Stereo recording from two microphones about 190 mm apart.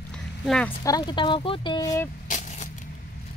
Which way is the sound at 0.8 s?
20° left (ahead or behind).